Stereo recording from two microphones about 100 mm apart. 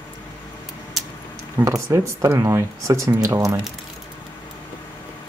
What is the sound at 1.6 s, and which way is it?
Speech, 30° right (ahead or behind).